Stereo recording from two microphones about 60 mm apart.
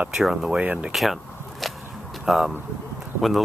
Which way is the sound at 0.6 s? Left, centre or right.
Right.